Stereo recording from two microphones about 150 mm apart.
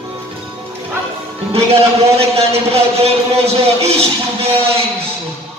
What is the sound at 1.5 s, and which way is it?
A man's voice, 40° right (ahead or behind).